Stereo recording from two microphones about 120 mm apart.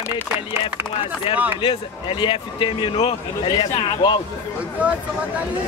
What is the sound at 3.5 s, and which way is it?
Speech, 35° left (ahead or behind).